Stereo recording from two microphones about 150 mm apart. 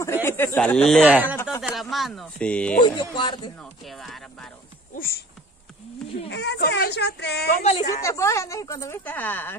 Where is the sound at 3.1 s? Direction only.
30° left (ahead or behind).